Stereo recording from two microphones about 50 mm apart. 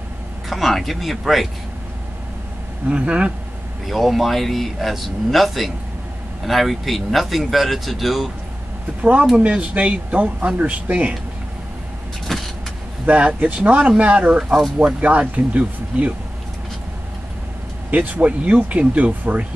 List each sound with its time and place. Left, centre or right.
0.5 s speech: centre
2.9 s speech: right
3.8 s speech: centre
9.4 s speech: right
12.3 s vehicle: centre
13.0 s speech: right
17.9 s speech: right